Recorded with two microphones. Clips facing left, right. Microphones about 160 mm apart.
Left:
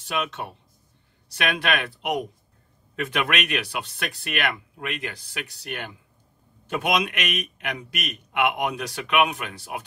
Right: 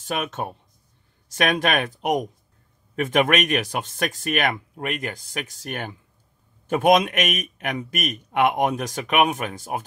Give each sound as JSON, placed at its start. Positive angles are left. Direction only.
{"t": 0.0, "sound": "speech", "side_deg": -45}